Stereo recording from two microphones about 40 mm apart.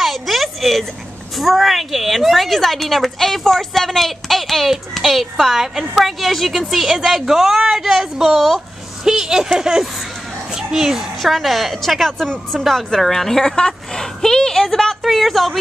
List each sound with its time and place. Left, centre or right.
0.0 s a sound: centre
1.3 s a woman's voice: centre
11.3 s a woman's voice: centre